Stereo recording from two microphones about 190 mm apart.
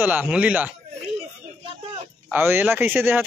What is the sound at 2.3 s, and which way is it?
Speech, 10° right (ahead or behind).